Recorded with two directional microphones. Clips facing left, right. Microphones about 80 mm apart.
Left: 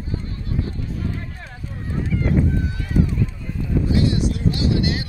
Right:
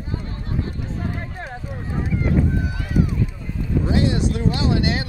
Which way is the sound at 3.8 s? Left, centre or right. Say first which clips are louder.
Right 1 dB; right.